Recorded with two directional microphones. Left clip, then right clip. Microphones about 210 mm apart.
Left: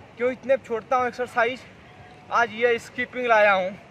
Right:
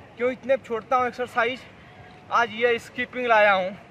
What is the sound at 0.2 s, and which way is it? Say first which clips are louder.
A man's voice: left 1 dB; centre (ahead or behind).